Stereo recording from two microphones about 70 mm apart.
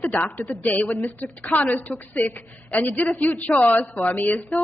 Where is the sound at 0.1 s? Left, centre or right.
Left.